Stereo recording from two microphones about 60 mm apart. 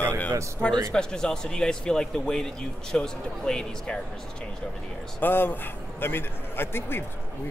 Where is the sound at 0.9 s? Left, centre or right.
Centre.